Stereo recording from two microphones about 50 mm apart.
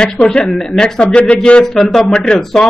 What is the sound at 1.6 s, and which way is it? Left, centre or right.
Speech, centre.